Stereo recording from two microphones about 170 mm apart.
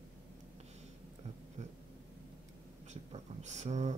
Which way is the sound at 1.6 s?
45° right (ahead or behind).